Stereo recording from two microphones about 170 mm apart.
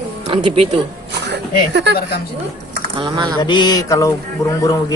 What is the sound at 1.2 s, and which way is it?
Speech, 90° right.